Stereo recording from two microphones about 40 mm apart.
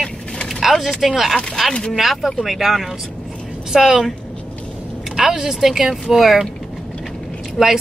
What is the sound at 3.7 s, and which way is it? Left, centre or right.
Speech, centre.